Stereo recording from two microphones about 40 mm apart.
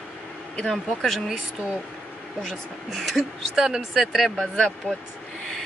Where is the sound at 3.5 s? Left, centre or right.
Centre.